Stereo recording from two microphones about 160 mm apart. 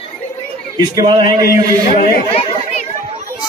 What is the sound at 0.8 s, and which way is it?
Speech, 25° right (ahead or behind).